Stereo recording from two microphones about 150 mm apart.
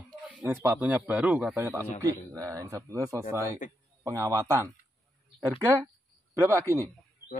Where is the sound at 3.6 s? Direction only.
60° left (ahead or behind).